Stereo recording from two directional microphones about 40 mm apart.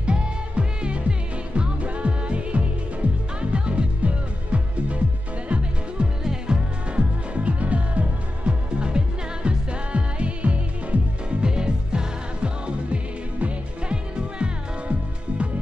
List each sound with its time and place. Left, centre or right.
0.0 s music: right
7.3 s music: right
8.6 s music: right